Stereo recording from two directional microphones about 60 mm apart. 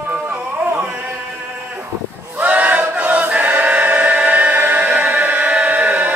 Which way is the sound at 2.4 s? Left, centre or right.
Right.